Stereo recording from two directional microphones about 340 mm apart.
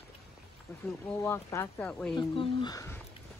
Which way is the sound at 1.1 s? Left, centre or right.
Centre.